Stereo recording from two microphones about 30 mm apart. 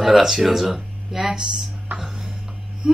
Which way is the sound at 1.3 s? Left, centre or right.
Right.